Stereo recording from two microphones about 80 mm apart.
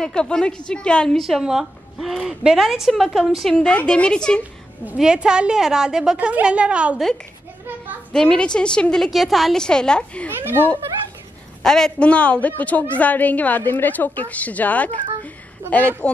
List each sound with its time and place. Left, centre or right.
0.0 s a woman's voice: centre
1.2 s a woman's voice: centre
4.9 s a woman's voice: centre
8.1 s a woman's voice: centre
9.1 s a woman's voice: centre
11.6 s a woman's voice: centre
15.2 s a sound: centre